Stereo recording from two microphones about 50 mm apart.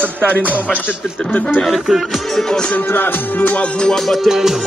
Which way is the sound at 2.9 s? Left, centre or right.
Left.